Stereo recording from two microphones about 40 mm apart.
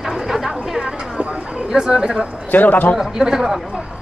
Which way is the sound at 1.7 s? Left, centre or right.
Centre.